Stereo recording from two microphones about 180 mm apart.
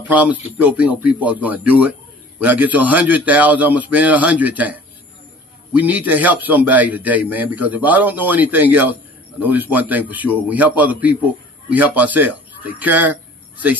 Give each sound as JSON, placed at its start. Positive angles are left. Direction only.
{"t": 0.1, "sound": "a man's voice", "side_deg": -10}